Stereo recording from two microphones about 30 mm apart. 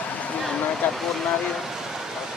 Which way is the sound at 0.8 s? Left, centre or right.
Left.